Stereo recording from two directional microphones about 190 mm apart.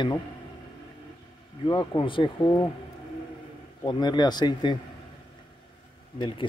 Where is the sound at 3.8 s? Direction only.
25° left (ahead or behind).